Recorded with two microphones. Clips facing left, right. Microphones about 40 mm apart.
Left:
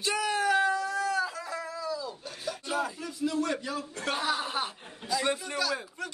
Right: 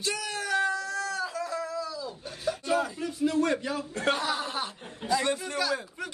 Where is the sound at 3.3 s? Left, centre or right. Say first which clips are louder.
Right 3 dB; right.